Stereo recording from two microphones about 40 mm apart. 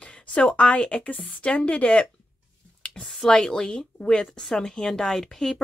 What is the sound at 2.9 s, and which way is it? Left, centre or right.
Speech, centre.